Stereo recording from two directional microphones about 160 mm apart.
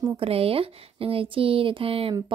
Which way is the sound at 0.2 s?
35° right (ahead or behind).